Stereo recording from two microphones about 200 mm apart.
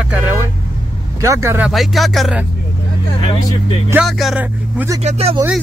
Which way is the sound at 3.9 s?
5° right (ahead or behind).